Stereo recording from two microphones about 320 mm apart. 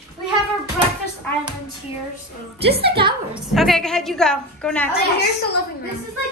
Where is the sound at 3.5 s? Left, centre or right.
Centre.